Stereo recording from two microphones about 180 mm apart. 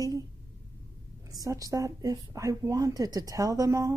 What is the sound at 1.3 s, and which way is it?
Speech, 20° right (ahead or behind).